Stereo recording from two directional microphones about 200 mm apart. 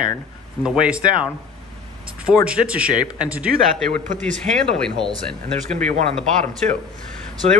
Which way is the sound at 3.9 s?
40° right (ahead or behind).